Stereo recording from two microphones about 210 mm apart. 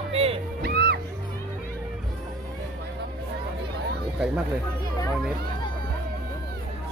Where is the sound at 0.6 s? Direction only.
50° right (ahead or behind).